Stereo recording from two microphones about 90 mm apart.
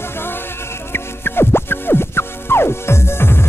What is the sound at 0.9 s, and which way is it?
Music, 25° left (ahead or behind).